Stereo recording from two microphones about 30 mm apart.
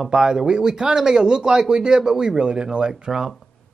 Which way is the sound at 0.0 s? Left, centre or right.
Right.